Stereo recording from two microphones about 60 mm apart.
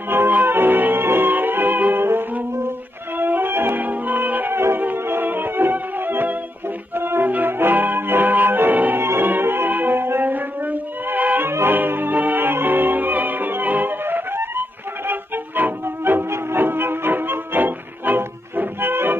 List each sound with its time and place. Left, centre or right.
0.1 s music: right
4.6 s music: right